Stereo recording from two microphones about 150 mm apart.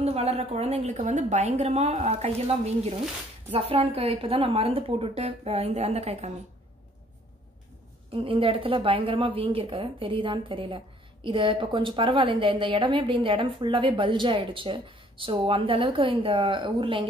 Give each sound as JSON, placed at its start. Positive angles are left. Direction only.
{"t": 0.0, "sound": "a woman's voice", "side_deg": -45}
{"t": 8.1, "sound": "a woman's voice", "side_deg": -35}